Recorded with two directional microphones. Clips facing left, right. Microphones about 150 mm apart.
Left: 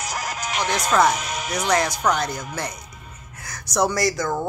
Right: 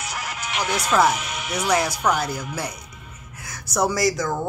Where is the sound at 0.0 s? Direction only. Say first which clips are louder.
Left 3 dB; 40° left (ahead or behind).